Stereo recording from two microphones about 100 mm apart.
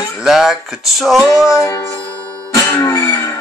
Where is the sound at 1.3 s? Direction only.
30° left (ahead or behind).